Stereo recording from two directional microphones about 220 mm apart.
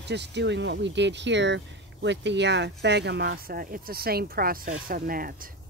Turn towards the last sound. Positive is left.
turn(degrees=-40)  # may be behind; listen again after turning